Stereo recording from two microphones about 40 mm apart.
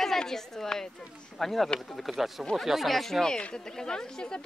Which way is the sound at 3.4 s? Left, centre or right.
Left.